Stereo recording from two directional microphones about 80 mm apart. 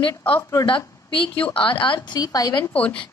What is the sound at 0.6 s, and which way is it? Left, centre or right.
A woman's voice, left.